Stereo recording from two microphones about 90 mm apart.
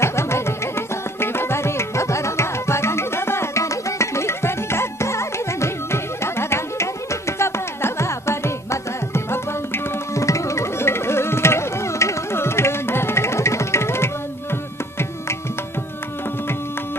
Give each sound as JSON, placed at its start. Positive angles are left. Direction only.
{"t": 0.0, "sound": "music", "side_deg": 30}